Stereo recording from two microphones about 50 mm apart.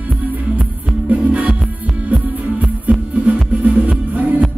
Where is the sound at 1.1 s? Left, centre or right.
Right.